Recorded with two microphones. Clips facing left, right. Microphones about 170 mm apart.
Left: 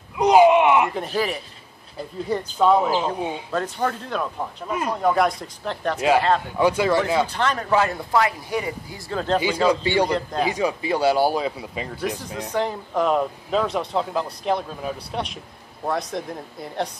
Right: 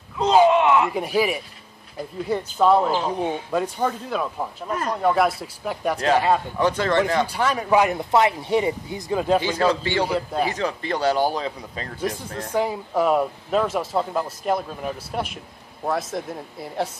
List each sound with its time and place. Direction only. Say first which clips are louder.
0.2 s a sound: left 2 dB; 15° left (ahead or behind)
0.9 s speech: right 3 dB; 10° right (ahead or behind)
3.2 s speech: right 2 dB; 15° left (ahead or behind)
3.5 s speech: even; 10° right (ahead or behind)
4.6 s speech: left 1 dB; 10° left (ahead or behind)
5.0 s speech: even; centre (ahead or behind)
5.9 s speech: left 1 dB; 10° left (ahead or behind)
7.2 s speech: right 1 dB; 10° right (ahead or behind)
9.1 s speech: right 2 dB; 10° right (ahead or behind)
9.7 s speech: left 5 dB; 15° left (ahead or behind)
10.0 s speech: even; 5° right (ahead or behind)
10.5 s speech: left 3 dB; 10° left (ahead or behind)
12.5 s speech: right 1 dB; 10° right (ahead or behind)